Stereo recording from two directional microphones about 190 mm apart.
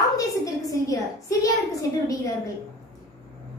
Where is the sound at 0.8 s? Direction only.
15° left (ahead or behind).